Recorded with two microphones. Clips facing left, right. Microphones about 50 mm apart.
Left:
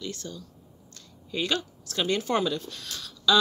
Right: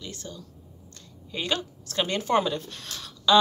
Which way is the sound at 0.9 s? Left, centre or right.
Right.